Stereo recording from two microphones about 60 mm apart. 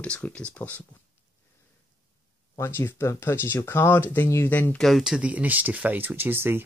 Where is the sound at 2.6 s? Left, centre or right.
Left.